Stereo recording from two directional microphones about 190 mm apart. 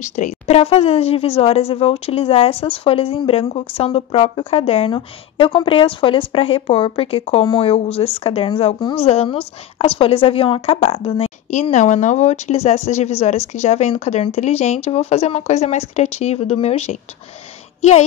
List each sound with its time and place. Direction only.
0.0 s a woman's voice: 35° left (ahead or behind)